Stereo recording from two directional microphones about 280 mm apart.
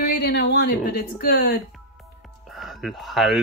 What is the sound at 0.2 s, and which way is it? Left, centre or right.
Speech, left.